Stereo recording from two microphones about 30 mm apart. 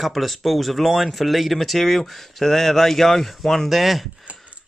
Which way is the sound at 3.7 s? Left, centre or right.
Centre.